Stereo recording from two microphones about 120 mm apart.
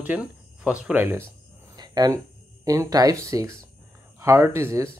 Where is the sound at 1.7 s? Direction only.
30° right (ahead or behind).